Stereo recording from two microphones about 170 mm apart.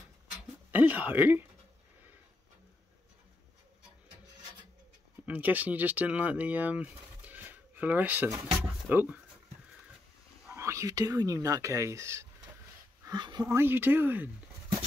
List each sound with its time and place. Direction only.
0.7 s speech: 10° right (ahead or behind)
5.2 s speech: 10° right (ahead or behind)
10.5 s speech: 15° right (ahead or behind)